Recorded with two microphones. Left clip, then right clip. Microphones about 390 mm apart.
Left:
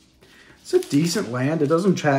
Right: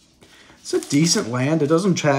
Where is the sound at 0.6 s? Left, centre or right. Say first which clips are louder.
Right 1 dB; right.